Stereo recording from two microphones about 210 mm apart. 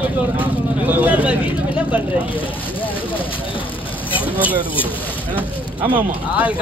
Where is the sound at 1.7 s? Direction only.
5° right (ahead or behind).